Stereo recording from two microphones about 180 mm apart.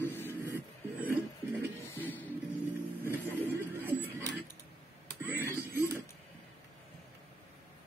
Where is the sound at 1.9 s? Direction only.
10° left (ahead or behind).